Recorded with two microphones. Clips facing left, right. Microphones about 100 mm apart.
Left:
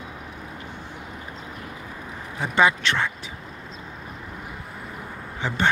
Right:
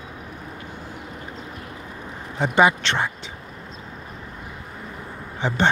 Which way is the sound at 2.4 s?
20° right (ahead or behind).